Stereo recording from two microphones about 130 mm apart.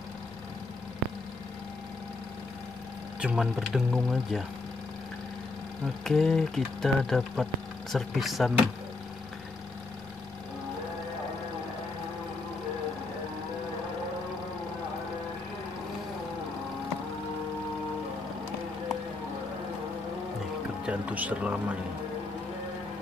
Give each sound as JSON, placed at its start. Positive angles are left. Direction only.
{"t": 3.2, "sound": "speech", "side_deg": -10}
{"t": 6.0, "sound": "speech", "side_deg": 5}
{"t": 20.8, "sound": "speech", "side_deg": -10}